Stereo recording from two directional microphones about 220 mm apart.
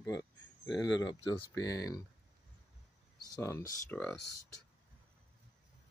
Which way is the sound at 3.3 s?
10° left (ahead or behind).